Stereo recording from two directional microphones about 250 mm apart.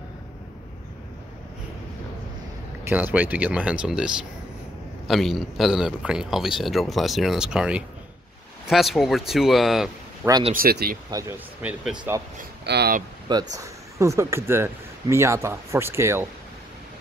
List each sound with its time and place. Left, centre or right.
2.8 s a man's voice: centre
10.2 s speech: centre
10.5 s speech: right
11.1 s speech: centre
12.4 s speech: right
13.3 s speech: centre